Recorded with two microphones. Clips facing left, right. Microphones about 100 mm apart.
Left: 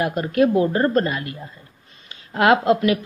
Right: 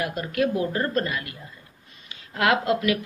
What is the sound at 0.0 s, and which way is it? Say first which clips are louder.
Speech: left 6 dB; 30° left (ahead or behind).